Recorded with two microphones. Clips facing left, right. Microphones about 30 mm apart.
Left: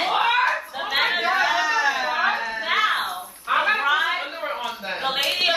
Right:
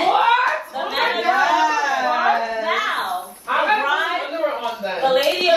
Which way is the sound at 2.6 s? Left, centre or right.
Left.